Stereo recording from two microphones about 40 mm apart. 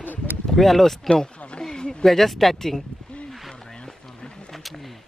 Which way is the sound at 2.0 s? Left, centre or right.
Centre.